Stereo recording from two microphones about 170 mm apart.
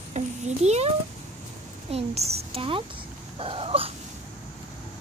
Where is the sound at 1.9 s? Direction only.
40° right (ahead or behind).